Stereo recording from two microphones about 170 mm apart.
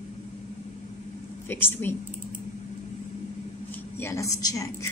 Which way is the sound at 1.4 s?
10° left (ahead or behind).